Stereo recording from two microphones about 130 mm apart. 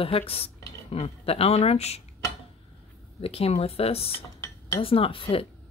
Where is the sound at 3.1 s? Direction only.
50° left (ahead or behind).